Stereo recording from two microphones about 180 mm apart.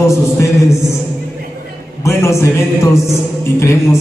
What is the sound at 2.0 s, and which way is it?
Music, 15° left (ahead or behind).